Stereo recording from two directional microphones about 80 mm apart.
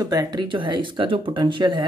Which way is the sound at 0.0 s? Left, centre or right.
Right.